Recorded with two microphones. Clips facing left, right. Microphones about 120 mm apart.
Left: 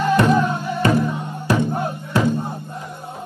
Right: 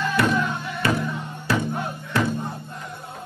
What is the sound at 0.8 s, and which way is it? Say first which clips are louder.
Music: left 5 dB; 30° left (ahead or behind).